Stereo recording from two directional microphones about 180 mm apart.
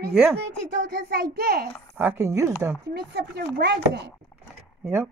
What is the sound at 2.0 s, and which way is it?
Speech, 15° right (ahead or behind).